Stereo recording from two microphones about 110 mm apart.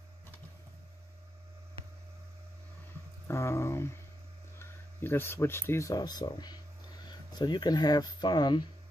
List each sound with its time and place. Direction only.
3.3 s speech: 25° left (ahead or behind); by 8.6 s 40° left (ahead or behind)